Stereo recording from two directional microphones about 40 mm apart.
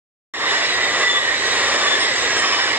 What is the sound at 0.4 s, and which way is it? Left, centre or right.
Train, right.